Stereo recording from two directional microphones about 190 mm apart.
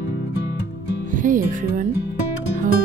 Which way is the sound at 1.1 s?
45° right (ahead or behind).